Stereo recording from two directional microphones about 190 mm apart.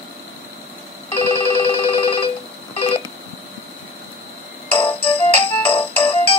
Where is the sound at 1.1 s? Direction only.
30° left (ahead or behind).